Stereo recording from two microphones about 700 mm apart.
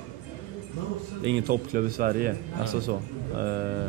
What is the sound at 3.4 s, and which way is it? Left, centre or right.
Speech, centre.